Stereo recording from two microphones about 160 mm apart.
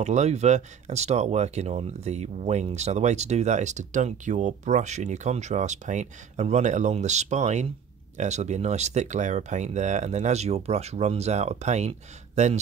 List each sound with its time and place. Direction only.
0.0 s speech: 45° right (ahead or behind)